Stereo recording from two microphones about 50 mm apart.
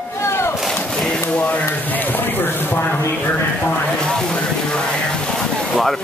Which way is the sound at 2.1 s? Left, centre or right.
Left.